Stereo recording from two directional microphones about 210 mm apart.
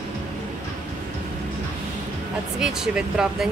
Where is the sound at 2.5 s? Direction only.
Centre (ahead or behind).